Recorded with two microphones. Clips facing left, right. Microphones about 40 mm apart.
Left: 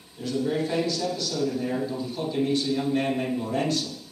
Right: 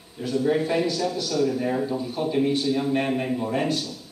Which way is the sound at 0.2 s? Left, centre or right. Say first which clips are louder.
Right 4 dB; centre.